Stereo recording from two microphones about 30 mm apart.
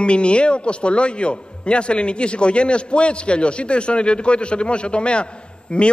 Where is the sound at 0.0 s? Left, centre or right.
Left.